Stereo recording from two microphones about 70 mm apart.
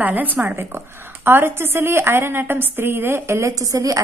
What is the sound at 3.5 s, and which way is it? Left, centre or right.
Speech, right.